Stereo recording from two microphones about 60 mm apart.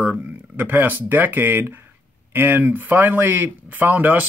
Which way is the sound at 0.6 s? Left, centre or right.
Right.